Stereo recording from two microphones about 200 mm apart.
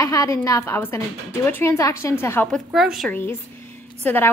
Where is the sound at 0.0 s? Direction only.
15° left (ahead or behind); by 3.2 s centre (ahead or behind).